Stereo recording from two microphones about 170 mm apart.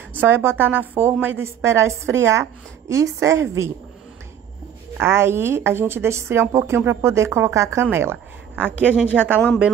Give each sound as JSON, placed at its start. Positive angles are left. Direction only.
{"t": 0.1, "sound": "a woman's voice", "side_deg": -10}
{"t": 4.9, "sound": "a woman's voice", "side_deg": -15}